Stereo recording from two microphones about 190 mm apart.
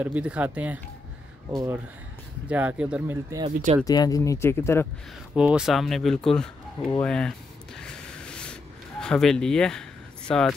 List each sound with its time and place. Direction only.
0.0 s speech: 5° right (ahead or behind)
2.4 s speech: 5° right (ahead or behind)
3.3 s speech: 20° right (ahead or behind)
3.8 s speech: 20° left (ahead or behind)
5.3 s speech: 5° right (ahead or behind)
7.0 s a sound: 5° left (ahead or behind)
9.0 s speech: 5° left (ahead or behind)